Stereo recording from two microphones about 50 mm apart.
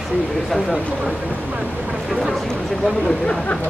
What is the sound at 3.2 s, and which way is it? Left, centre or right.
Speech, left.